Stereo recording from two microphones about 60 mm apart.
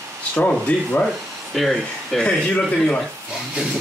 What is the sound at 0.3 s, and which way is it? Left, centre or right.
Speech, left.